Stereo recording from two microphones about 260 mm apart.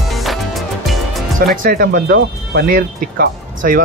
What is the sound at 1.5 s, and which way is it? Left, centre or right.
Speech, right.